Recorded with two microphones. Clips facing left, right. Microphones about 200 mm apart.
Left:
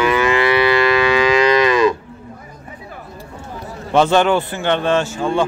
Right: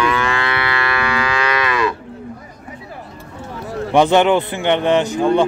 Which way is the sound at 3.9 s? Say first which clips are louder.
Right 1 dB; 20° right (ahead or behind).